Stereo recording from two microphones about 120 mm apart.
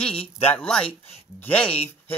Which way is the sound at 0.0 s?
10° left (ahead or behind).